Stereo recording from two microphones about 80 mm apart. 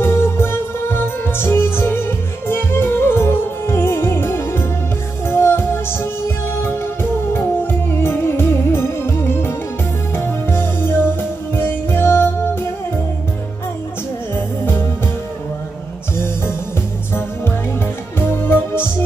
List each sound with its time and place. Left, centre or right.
0.0 s music: left